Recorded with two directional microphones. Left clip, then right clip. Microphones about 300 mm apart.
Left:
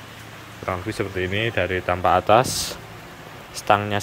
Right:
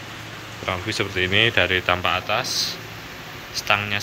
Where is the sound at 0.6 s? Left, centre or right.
Centre.